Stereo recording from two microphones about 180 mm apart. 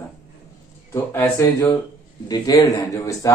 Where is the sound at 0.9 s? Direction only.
10° left (ahead or behind).